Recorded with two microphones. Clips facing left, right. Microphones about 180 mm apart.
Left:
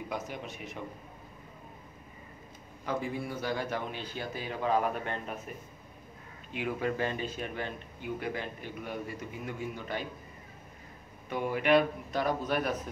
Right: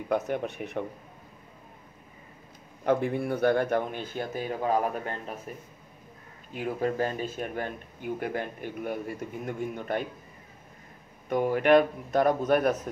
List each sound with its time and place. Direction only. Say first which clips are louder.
0.1 s speech: right 14 dB; 60° right (ahead or behind)
2.8 s a man's voice: right 8 dB; 60° right (ahead or behind)
11.2 s speech: right 6 dB; 45° right (ahead or behind)